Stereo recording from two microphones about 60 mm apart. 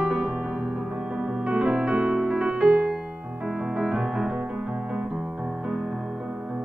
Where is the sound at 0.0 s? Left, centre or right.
Centre.